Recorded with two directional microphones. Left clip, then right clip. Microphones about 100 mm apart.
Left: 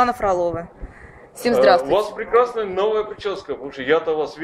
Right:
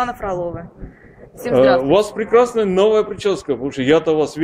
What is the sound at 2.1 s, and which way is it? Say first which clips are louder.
A man's voice: right 4 dB; 40° right (ahead or behind).